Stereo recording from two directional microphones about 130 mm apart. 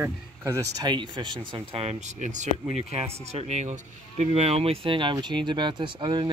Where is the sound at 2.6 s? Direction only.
50° right (ahead or behind); by 6.3 s 35° right (ahead or behind).